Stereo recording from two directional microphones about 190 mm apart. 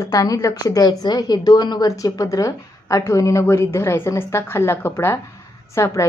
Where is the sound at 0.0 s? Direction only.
20° left (ahead or behind).